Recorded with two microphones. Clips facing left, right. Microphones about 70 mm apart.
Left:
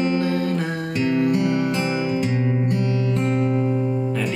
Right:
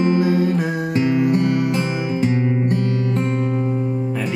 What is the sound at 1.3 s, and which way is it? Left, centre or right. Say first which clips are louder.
Music: right 2 dB; right.